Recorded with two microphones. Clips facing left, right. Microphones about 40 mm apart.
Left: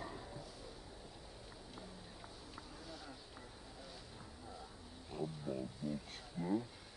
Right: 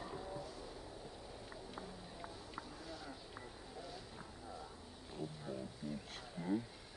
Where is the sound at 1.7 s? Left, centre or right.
Centre.